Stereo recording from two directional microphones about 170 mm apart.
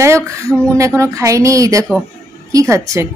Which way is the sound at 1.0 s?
15° right (ahead or behind).